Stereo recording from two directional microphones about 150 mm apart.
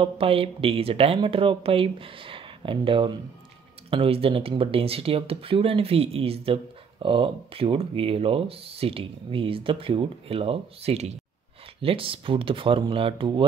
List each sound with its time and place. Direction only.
0.0 s speech: 40° right (ahead or behind)